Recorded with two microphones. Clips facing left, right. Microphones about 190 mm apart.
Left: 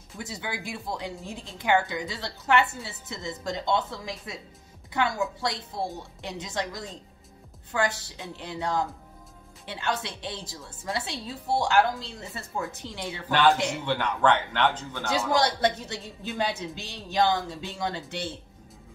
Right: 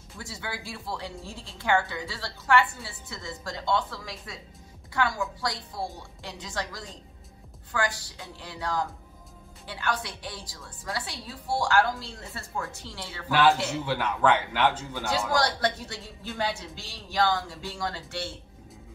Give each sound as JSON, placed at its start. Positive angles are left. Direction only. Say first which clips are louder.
{"t": 0.2, "sound": "speech", "louder": "left 3 dB", "side_deg": 20}
{"t": 13.3, "sound": "a man's voice", "louder": "even", "side_deg": -5}
{"t": 15.0, "sound": "speech", "louder": "left 2 dB", "side_deg": 20}